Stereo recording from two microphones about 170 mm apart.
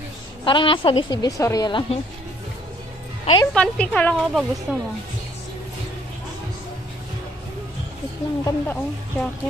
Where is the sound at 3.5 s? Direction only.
5° left (ahead or behind).